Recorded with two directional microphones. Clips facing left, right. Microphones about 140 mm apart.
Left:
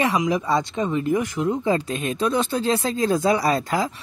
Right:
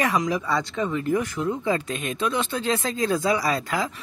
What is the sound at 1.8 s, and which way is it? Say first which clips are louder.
Speech: left 3 dB; 35° left (ahead or behind).